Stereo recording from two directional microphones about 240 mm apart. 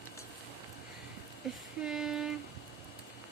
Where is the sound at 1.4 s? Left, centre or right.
Centre.